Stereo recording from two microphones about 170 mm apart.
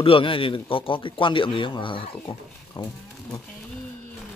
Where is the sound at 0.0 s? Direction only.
30° left (ahead or behind).